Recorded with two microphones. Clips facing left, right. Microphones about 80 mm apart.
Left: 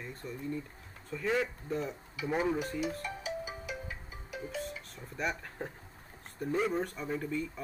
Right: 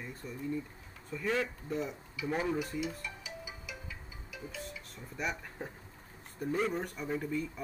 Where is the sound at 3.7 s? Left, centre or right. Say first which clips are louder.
Left 5 dB; left.